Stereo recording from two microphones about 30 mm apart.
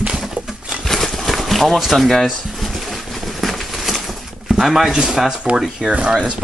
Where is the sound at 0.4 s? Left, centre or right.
Right.